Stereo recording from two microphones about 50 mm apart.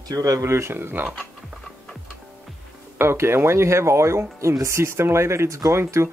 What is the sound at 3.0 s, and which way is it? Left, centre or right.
Speech, right.